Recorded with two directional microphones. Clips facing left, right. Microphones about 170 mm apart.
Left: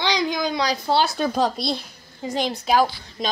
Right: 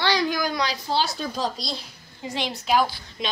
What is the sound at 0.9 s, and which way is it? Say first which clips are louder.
Speech: left 8 dB; 60° left (ahead or behind).